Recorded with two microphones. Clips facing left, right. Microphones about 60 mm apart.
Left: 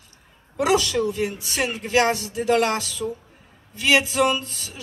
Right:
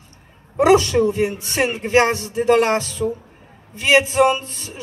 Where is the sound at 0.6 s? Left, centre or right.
Right.